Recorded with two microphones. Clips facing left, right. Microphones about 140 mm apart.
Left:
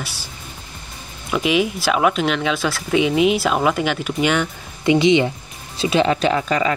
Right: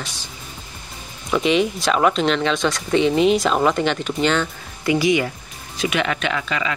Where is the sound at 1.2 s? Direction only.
5° left (ahead or behind).